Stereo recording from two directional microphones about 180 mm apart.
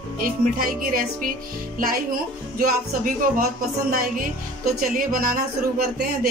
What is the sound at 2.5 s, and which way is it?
Speech, 50° right (ahead or behind).